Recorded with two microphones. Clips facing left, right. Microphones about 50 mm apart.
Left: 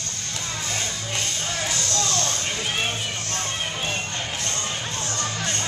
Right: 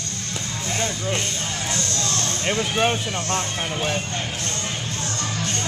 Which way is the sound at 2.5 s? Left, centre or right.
Right.